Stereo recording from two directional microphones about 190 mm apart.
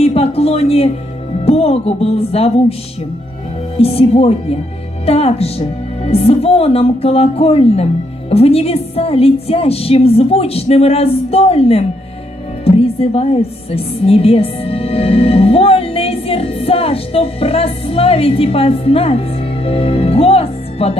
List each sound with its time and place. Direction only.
0.0 s a sound: 30° left (ahead or behind)
1.4 s speech: 30° left (ahead or behind)
3.7 s a woman's voice: 30° left (ahead or behind)